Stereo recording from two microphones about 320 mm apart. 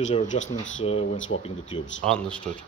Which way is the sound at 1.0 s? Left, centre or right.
Left.